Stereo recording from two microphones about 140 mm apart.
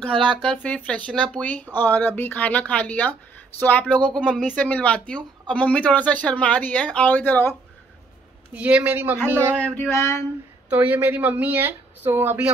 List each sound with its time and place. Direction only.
0.1 s speech: 35° right (ahead or behind)
0.5 s speech: 10° left (ahead or behind)
8.5 s speech: 10° right (ahead or behind)
9.6 s a sound: 10° left (ahead or behind)
10.7 s speech: 10° right (ahead or behind)